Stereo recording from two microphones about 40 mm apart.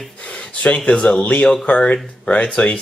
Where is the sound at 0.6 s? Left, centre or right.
Left.